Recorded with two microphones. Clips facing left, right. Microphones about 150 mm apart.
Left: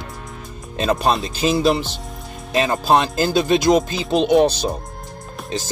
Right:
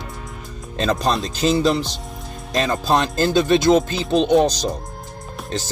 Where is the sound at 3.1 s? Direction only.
10° left (ahead or behind).